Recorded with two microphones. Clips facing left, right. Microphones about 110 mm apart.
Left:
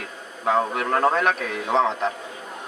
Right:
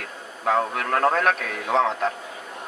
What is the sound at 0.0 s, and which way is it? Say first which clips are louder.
A man's voice: left 1 dB; 5° left (ahead or behind).